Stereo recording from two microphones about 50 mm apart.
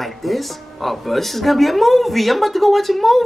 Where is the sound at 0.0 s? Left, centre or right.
Centre.